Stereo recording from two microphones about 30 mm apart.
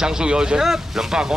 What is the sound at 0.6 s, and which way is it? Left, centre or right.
Speech, centre.